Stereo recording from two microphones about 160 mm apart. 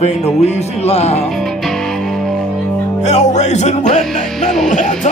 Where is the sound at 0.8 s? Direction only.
40° left (ahead or behind).